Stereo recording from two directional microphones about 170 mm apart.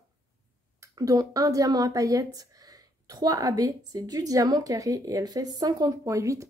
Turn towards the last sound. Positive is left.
turn(degrees=-20)  # may be behind; listen again after turning